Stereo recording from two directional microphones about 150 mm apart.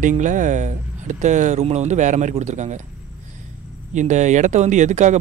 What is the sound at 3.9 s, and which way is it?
Speech, 55° right (ahead or behind).